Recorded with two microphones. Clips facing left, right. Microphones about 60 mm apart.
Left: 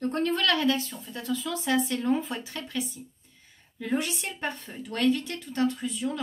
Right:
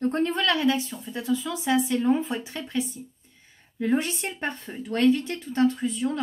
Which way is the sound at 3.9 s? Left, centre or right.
Right.